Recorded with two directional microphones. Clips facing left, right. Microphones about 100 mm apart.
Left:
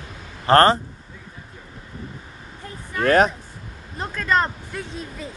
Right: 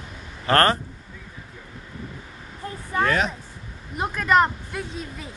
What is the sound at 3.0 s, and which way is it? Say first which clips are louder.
Speech: left 6 dB; 45° left (ahead or behind).